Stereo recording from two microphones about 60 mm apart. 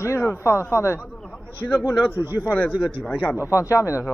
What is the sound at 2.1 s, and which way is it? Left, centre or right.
Speech, right.